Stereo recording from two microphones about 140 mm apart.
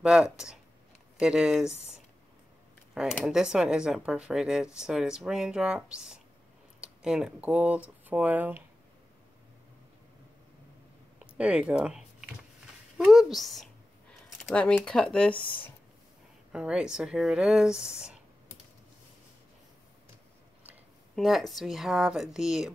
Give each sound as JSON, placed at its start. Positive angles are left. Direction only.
{"t": 0.0, "sound": "speech", "side_deg": -5}
{"t": 2.9, "sound": "a sound", "side_deg": -5}
{"t": 3.3, "sound": "speech", "side_deg": -5}
{"t": 11.1, "sound": "typing", "side_deg": -10}
{"t": 12.9, "sound": "speech", "side_deg": -5}
{"t": 15.3, "sound": "speech", "side_deg": 35}
{"t": 16.5, "sound": "speech", "side_deg": -5}
{"t": 21.2, "sound": "speech", "side_deg": 0}